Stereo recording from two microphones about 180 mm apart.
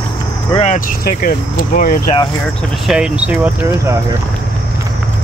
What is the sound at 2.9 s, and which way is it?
Speech, 5° right (ahead or behind).